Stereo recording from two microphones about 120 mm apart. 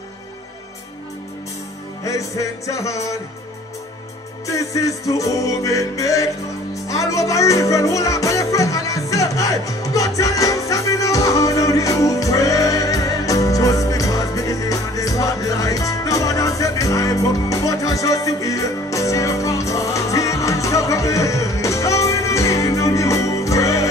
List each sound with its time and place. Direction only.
2.0 s music: 25° left (ahead or behind)
4.5 s music: 25° left (ahead or behind)